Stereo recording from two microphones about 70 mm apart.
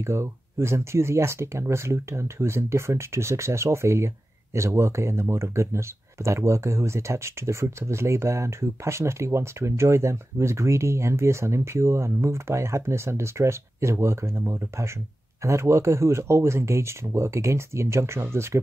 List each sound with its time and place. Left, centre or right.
0.0 s speech: right